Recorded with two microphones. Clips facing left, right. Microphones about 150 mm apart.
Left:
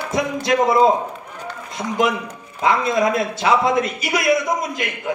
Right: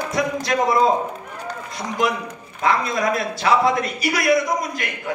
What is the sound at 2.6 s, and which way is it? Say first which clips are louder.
A man's voice: left 3 dB; 20° left (ahead or behind).